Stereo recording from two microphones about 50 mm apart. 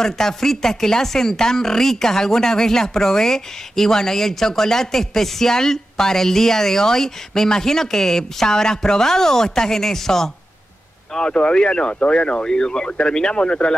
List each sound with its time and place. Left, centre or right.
0.0 s speech: centre
11.1 s speech: centre